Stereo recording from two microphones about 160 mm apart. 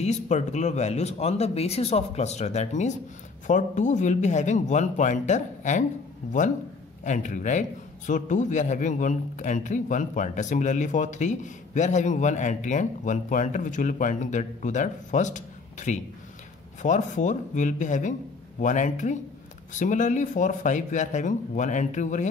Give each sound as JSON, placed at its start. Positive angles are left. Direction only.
{"t": 0.0, "sound": "a man's voice", "side_deg": 45}
{"t": 7.1, "sound": "a man's voice", "side_deg": 50}